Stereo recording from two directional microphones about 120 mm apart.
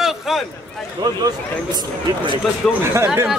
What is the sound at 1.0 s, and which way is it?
Speech, 35° right (ahead or behind).